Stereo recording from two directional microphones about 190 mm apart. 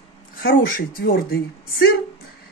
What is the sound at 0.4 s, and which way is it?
Speech, 50° left (ahead or behind).